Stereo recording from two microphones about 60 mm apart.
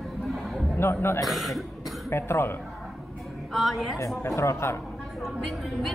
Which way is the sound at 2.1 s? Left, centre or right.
Left.